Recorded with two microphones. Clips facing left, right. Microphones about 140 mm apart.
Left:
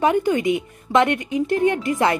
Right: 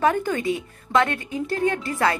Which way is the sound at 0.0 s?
15° left (ahead or behind).